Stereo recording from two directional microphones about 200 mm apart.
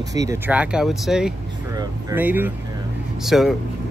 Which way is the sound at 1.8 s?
15° right (ahead or behind).